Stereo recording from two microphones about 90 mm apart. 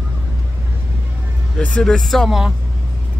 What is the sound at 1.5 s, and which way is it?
Speech, 10° left (ahead or behind).